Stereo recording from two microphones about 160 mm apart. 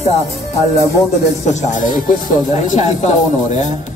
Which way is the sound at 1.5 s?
50° left (ahead or behind).